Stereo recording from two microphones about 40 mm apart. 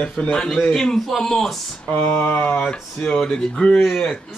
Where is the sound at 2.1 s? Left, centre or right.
Left.